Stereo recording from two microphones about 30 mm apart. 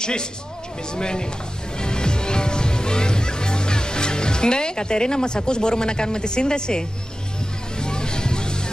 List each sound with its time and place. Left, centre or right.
0.0 s speech: left
1.8 s music: left